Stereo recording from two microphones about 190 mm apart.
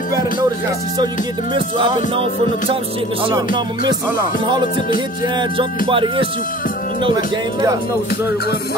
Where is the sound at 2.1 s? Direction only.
30° right (ahead or behind).